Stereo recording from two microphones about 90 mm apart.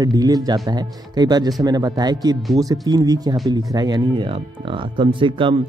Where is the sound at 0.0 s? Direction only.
45° right (ahead or behind).